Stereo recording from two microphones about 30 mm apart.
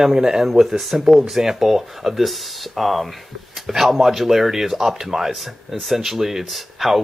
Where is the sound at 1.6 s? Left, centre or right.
Centre.